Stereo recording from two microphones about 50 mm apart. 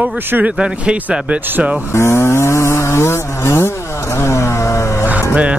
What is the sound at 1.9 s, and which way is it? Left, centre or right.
Chainsaw, left.